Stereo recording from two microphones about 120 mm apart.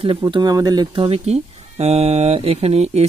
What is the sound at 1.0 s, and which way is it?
Speech, 60° right (ahead or behind).